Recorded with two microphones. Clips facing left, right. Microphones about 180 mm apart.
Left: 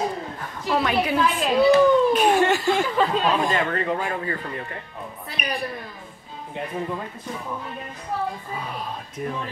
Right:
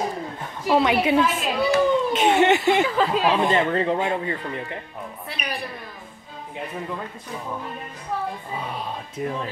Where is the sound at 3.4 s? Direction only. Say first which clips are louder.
Right 3 dB; 25° right (ahead or behind).